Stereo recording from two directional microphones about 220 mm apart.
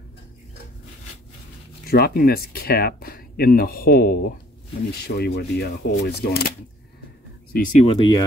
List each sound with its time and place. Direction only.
1.9 s speech: 45° left (ahead or behind)
7.5 s speech: 35° left (ahead or behind)